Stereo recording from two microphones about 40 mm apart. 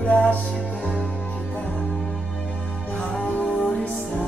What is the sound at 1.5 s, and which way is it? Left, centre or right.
Music, left.